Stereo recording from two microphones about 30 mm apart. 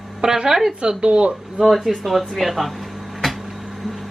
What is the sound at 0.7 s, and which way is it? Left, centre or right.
Speech, right.